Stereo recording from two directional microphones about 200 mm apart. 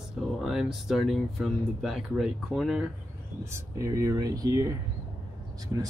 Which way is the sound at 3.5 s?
15° right (ahead or behind).